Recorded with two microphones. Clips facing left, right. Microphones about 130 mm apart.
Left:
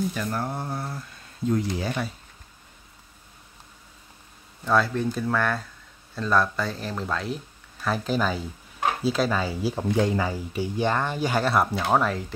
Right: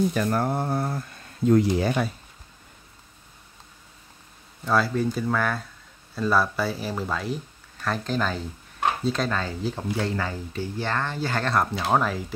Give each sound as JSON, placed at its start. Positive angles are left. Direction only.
{"t": 0.1, "sound": "speech", "side_deg": -55}
{"t": 4.6, "sound": "speech", "side_deg": 0}